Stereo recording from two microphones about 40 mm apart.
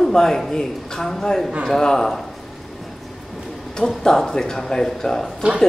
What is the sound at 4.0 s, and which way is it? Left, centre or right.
A man's voice, centre.